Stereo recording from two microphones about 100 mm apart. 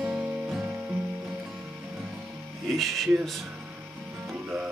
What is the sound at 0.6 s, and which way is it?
Music, 25° right (ahead or behind).